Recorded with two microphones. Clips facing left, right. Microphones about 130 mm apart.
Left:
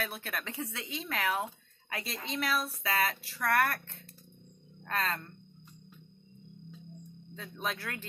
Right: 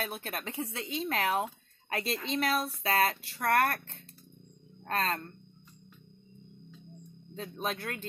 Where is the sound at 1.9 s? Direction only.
60° right (ahead or behind).